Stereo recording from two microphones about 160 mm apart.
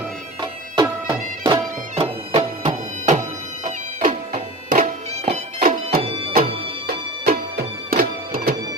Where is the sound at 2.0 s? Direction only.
40° right (ahead or behind); by 6.0 s 60° right (ahead or behind).